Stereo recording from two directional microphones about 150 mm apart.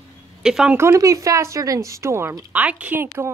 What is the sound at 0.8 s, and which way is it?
Speech, 20° right (ahead or behind).